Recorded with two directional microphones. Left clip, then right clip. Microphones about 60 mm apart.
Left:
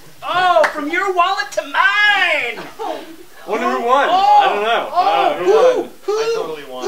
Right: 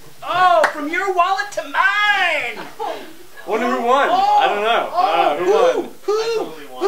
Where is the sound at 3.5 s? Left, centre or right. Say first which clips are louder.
Left 1 dB; centre.